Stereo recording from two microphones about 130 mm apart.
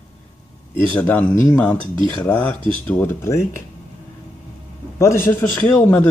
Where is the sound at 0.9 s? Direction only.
10° left (ahead or behind).